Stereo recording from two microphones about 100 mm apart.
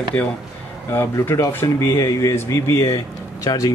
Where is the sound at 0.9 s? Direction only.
25° left (ahead or behind).